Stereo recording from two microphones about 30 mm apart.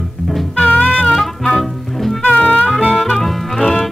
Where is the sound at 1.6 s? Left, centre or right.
Centre.